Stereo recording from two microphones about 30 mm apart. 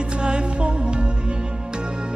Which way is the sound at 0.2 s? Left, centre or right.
Right.